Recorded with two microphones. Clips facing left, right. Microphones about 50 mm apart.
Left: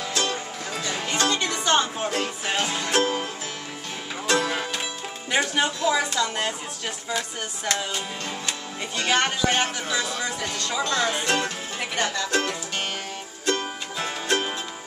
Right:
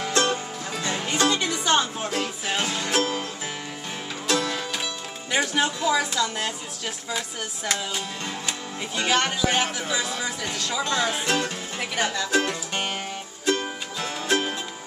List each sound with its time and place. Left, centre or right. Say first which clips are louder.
0.1 s music: right 4 dB; right
1.0 s music: right 1 dB; centre
4.3 s music: left 2 dB; centre
5.9 s speech: even; centre
10.8 s speech: left 1 dB; centre
11.1 s music: left 1 dB; centre